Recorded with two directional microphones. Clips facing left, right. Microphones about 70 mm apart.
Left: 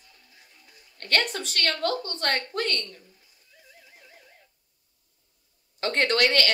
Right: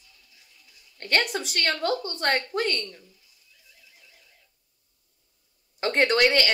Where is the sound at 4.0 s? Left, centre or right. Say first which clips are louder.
Left 5 dB; left.